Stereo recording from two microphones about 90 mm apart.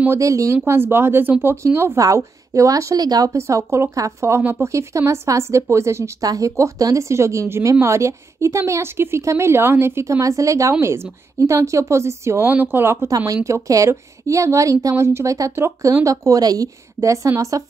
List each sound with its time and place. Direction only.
0.1 s a woman's voice: 35° right (ahead or behind)
3.3 s a woman's voice: 35° right (ahead or behind)